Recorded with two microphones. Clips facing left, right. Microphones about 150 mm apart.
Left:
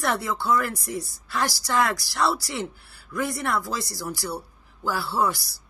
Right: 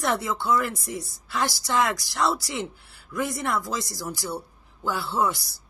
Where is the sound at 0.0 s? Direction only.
20° right (ahead or behind).